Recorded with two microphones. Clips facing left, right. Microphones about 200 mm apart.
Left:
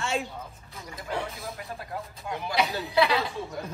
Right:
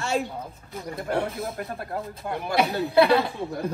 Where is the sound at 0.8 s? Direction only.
55° right (ahead or behind).